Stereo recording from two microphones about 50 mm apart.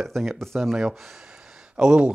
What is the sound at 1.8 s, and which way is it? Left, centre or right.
Speech, right.